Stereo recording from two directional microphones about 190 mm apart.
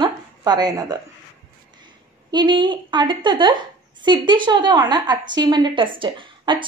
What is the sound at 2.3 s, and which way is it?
A woman's voice, 25° right (ahead or behind).